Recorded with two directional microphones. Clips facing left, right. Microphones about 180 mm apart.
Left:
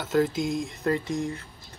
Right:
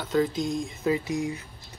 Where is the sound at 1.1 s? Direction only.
15° right (ahead or behind).